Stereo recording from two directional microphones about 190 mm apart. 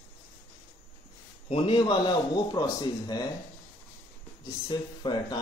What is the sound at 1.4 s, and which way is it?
A man's voice, 30° left (ahead or behind).